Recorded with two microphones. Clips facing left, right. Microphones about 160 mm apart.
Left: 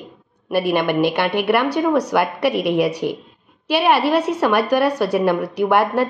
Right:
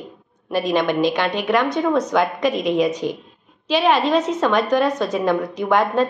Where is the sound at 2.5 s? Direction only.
70° left (ahead or behind).